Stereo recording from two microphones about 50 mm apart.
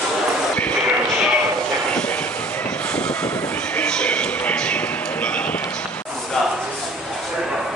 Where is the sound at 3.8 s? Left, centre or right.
Centre.